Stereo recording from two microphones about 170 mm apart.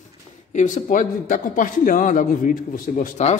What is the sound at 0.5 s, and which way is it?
A man's voice, 50° left (ahead or behind).